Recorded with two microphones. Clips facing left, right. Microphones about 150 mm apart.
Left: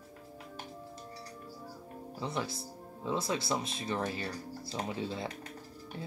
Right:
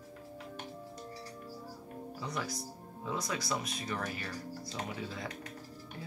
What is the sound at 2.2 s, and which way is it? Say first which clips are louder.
Speech: left 3 dB; 25° left (ahead or behind).